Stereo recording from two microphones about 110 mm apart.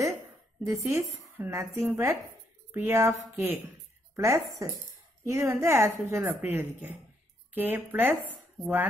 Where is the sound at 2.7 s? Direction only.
20° right (ahead or behind).